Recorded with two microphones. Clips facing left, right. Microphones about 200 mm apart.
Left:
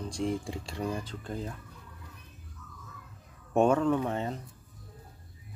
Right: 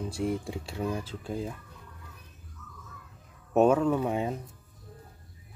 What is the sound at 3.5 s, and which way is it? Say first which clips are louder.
Speech: right 2 dB; 5° right (ahead or behind).